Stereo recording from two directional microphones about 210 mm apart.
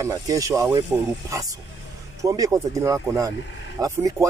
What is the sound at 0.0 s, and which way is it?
A man's voice, 15° right (ahead or behind).